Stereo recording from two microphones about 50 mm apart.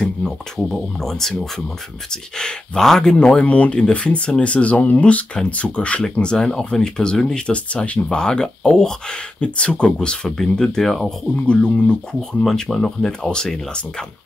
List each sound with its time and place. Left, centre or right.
0.0 s speech: centre
3.2 s speech: left
6.3 s speech: centre
9.4 s speech: left
11.3 s speech: left